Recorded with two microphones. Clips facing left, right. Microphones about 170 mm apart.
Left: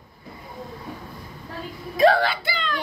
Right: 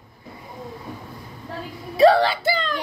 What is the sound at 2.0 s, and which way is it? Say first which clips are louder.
Whimper: right 3 dB; 35° right (ahead or behind).